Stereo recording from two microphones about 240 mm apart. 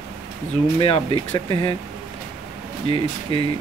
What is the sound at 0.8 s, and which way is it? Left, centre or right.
Speech, left.